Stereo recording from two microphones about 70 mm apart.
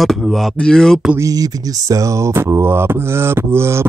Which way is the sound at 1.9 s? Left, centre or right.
Right.